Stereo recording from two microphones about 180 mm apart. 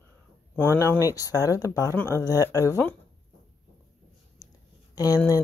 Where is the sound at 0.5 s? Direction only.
10° left (ahead or behind).